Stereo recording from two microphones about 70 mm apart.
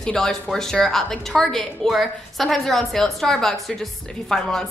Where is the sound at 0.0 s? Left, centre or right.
Centre.